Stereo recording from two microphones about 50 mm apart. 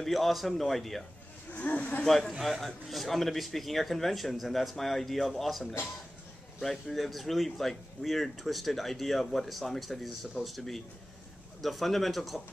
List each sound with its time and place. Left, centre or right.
0.0 s speech: centre
1.5 s speech: left
2.0 s speech: centre